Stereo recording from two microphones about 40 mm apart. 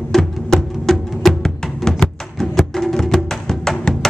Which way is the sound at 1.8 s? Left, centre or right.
Centre.